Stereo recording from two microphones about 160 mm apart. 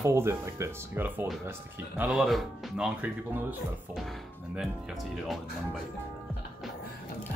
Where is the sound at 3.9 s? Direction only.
Centre (ahead or behind).